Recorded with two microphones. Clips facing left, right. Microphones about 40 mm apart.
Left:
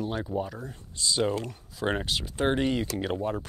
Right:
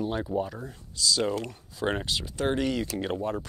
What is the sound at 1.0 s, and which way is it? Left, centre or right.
Speech, left.